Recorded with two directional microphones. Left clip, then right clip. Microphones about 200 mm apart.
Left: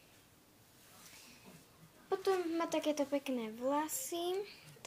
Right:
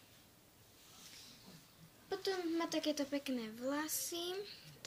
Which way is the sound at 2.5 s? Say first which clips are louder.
Left 3 dB; 10° right (ahead or behind).